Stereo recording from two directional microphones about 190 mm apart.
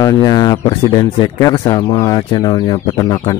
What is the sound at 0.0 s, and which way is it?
Speech, 20° left (ahead or behind).